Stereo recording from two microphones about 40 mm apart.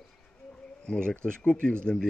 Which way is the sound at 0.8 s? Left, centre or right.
Left.